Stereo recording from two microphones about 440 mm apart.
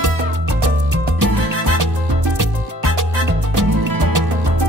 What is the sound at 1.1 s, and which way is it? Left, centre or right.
Music, right.